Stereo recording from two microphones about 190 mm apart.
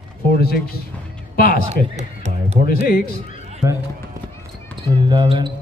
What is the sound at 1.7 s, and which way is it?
Speech, 35° right (ahead or behind).